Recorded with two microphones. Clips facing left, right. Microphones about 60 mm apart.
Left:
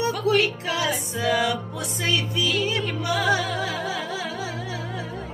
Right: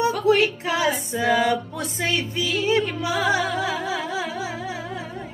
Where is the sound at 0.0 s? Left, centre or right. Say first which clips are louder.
Right 3 dB; right.